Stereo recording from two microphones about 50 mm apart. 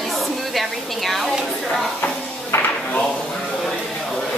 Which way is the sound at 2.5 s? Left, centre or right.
Left.